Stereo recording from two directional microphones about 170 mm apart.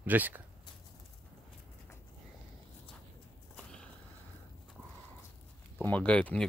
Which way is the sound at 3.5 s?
5° left (ahead or behind).